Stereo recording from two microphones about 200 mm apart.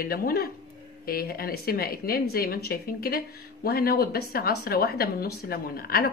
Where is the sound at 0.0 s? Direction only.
50° left (ahead or behind).